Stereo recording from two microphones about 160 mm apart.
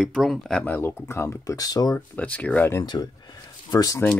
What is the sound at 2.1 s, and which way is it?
Speech, 10° left (ahead or behind).